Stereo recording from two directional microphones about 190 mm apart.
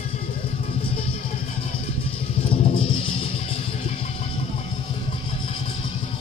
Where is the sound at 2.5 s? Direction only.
30° left (ahead or behind).